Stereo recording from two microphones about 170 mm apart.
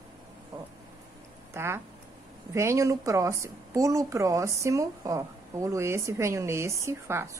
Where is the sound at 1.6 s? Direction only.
15° right (ahead or behind).